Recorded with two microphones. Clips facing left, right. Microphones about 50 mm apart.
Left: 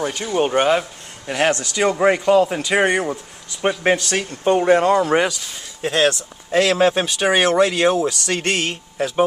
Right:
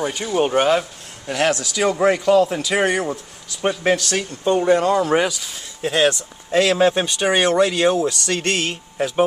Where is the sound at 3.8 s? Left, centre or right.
Left.